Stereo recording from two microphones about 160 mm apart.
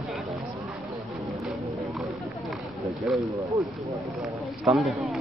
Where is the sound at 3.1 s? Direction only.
5° right (ahead or behind).